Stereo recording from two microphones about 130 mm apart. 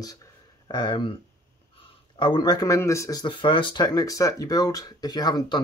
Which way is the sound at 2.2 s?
35° left (ahead or behind).